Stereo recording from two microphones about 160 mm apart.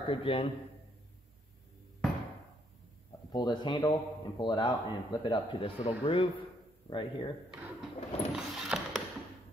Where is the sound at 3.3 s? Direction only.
25° left (ahead or behind).